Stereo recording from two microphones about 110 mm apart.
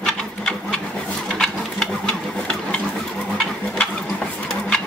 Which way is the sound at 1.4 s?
5° left (ahead or behind).